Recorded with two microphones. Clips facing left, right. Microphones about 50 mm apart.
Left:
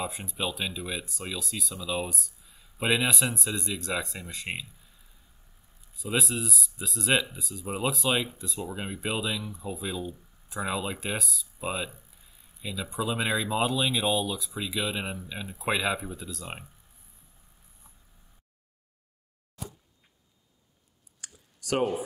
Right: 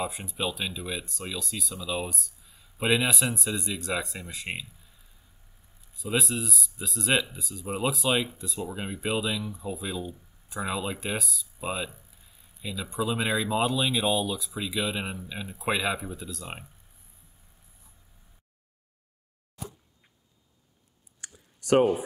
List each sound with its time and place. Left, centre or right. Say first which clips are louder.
0.0 s speech: right 1 dB; centre
5.9 s speech: right 1 dB; centre
21.2 s clicking: right 2 dB; right